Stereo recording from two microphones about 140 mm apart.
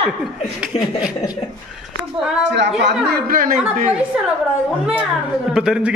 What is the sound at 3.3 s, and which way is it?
Speech, 90° right.